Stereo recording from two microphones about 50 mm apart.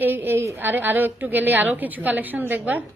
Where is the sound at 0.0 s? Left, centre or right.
Right.